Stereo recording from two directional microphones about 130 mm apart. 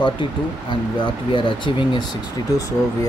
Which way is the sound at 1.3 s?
40° left (ahead or behind).